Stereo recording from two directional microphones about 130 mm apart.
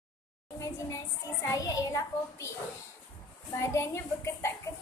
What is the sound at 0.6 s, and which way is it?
A child's voice, 25° left (ahead or behind).